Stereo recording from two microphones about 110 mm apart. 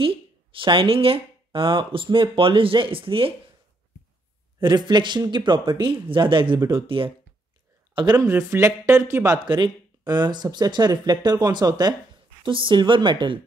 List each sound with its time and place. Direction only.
0.0 s speech: 55° right (ahead or behind)
4.6 s speech: 40° right (ahead or behind)
8.2 s speech: 25° right (ahead or behind)
9.4 s speech: 45° right (ahead or behind)
12.4 s speech: 50° right (ahead or behind)